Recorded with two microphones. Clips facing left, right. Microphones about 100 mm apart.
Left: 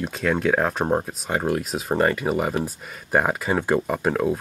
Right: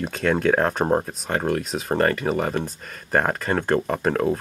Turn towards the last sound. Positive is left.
turn(degrees=5)  # may be behind; listen again after turning